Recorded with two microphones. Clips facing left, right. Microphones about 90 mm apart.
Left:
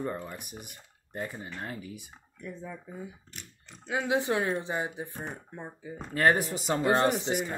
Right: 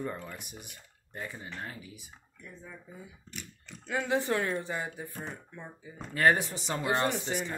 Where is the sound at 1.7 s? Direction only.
45° left (ahead or behind).